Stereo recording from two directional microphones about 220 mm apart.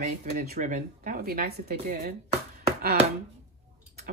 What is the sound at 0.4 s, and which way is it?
A woman's voice, 35° right (ahead or behind).